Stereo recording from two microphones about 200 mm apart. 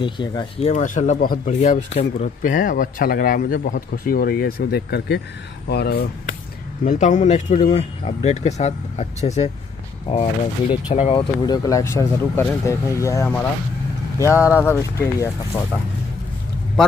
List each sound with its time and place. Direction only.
0.0 s speech: 25° left (ahead or behind)
10.9 s speech: 30° left (ahead or behind)